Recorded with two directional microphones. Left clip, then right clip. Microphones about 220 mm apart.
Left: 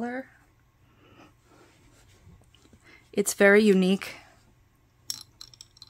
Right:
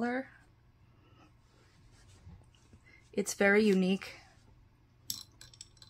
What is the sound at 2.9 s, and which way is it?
Speech, 45° left (ahead or behind).